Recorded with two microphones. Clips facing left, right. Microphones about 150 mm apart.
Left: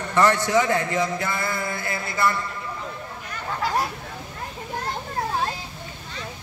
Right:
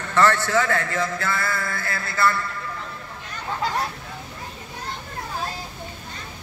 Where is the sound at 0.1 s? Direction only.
15° left (ahead or behind).